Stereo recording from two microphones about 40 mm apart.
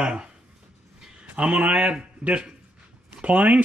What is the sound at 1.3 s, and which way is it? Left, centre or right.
Speech, right.